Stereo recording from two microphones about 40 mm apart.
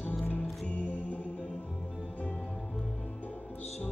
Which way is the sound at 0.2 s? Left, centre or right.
Left.